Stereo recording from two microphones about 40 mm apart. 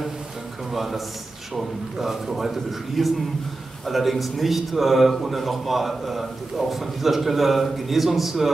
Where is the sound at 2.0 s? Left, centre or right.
Centre.